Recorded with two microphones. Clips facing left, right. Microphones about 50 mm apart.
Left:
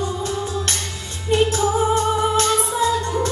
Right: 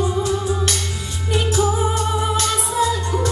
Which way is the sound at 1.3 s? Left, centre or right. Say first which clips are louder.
Left 2 dB; left.